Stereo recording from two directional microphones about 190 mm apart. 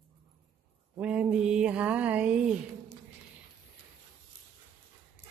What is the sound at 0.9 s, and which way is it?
Mantra, 5° right (ahead or behind).